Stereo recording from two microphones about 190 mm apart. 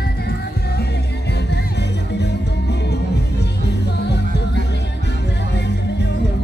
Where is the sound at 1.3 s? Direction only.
60° left (ahead or behind).